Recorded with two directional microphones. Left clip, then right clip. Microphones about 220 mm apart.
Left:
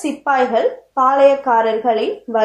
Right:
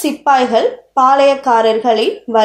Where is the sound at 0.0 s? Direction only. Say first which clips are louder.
Right 4 dB; 40° right (ahead or behind).